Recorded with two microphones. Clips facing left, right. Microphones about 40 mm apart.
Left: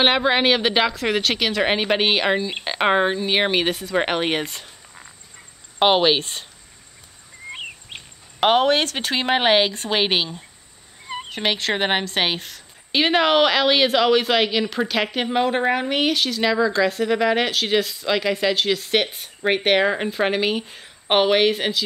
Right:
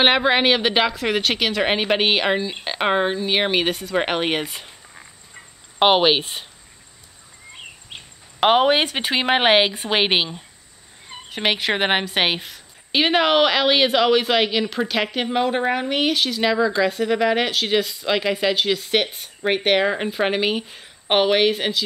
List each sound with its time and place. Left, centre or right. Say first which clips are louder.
0.0 s a woman's voice: right 1 dB; centre
5.8 s speech: right 1 dB; centre
8.4 s a woman's voice: right 1 dB; centre